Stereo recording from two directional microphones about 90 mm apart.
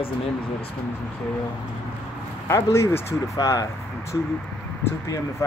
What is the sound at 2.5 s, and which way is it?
Speech, 30° left (ahead or behind).